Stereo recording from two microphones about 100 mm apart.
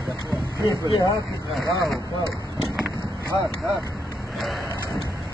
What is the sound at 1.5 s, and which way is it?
Speech, centre (ahead or behind).